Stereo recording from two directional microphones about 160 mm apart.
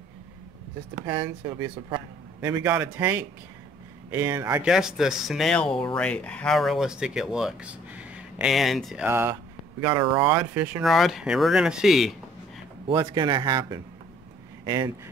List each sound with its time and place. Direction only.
1.0 s speech: 20° right (ahead or behind)
2.4 s speech: 15° right (ahead or behind)
4.6 s speech: 5° right (ahead or behind)
12.9 s speech: 25° right (ahead or behind)
14.6 s a sound: 25° right (ahead or behind)